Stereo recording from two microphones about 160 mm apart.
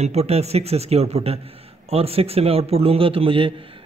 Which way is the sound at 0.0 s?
40° right (ahead or behind).